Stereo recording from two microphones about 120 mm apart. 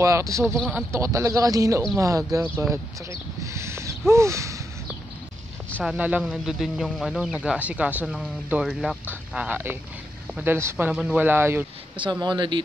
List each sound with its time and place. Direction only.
0.0 s speech: 25° right (ahead or behind)
3.5 s a sound: 25° right (ahead or behind)
4.1 s speech: 25° right (ahead or behind)
5.8 s speech: 10° right (ahead or behind)
10.9 s speech: 10° right (ahead or behind)
12.0 s speech: 40° right (ahead or behind)